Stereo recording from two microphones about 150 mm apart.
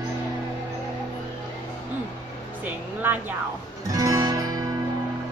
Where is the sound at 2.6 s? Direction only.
10° right (ahead or behind).